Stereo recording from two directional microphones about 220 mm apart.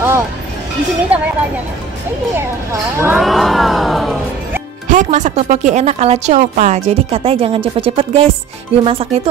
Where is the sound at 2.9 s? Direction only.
5° right (ahead or behind).